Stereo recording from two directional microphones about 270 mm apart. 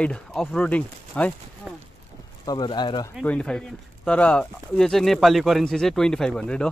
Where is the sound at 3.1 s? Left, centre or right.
Centre.